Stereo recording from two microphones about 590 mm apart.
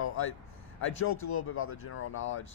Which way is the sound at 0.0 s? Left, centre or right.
Left.